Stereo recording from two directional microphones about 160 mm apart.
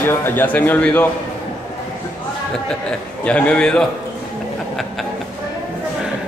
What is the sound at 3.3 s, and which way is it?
Speech, 5° left (ahead or behind).